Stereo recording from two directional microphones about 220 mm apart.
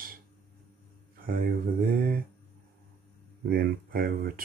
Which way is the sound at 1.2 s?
40° right (ahead or behind).